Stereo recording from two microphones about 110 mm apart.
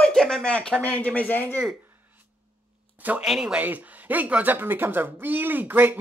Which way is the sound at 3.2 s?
5° right (ahead or behind).